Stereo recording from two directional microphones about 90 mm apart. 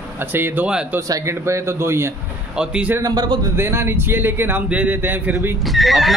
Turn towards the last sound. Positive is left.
turn(degrees=0)  # may be behind; listen again after turning